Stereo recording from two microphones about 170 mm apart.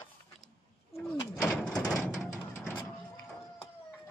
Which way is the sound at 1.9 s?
Centre (ahead or behind).